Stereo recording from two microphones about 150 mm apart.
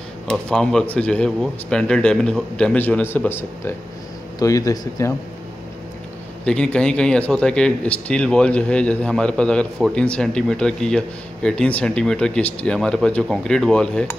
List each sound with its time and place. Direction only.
0.3 s speech: 5° left (ahead or behind); by 5.1 s 20° left (ahead or behind)
6.4 s speech: 5° left (ahead or behind)